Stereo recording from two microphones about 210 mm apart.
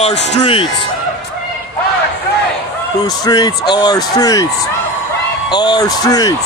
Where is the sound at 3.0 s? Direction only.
20° left (ahead or behind).